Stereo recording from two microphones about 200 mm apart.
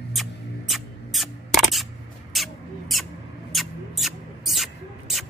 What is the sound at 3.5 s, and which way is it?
Mouse, centre (ahead or behind).